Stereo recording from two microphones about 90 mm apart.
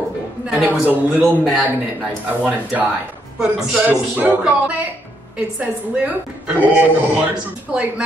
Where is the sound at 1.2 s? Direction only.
5° right (ahead or behind).